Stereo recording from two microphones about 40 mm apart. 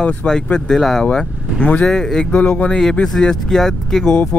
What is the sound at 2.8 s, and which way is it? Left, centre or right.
Speech, centre.